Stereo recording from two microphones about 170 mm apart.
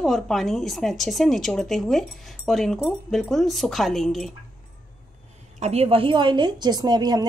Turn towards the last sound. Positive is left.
turn(degrees=-25)  # may be behind; listen again after turning